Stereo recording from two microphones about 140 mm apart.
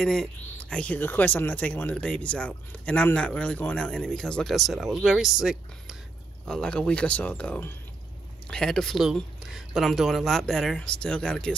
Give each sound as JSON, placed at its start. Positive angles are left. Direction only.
{"t": 0.0, "sound": "speech", "side_deg": 5}